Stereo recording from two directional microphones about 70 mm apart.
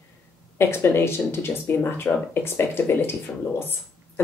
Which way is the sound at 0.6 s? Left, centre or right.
Left.